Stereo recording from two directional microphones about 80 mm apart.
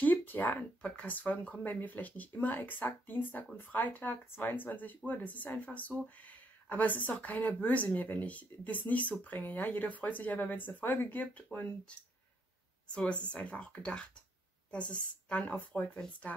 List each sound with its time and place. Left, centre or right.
0.0 s speech: left
12.9 s speech: centre